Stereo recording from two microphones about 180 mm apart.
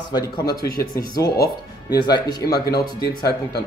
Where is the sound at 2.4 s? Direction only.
60° left (ahead or behind).